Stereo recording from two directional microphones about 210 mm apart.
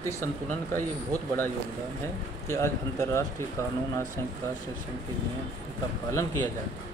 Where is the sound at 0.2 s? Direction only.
10° left (ahead or behind).